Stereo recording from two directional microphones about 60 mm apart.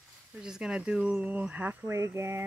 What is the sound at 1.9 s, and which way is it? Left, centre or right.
Speech, right.